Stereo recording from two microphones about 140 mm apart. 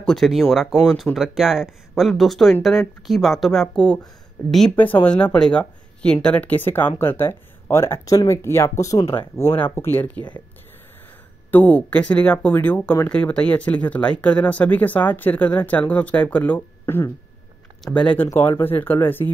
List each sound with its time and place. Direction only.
0.0 s speech: 5° left (ahead or behind); by 9.0 s 20° left (ahead or behind)
9.0 s speech: 40° left (ahead or behind)
9.4 s speech: 15° left (ahead or behind)
11.5 s speech: 10° left (ahead or behind)